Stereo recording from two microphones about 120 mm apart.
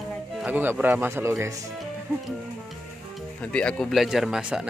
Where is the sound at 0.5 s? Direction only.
15° right (ahead or behind).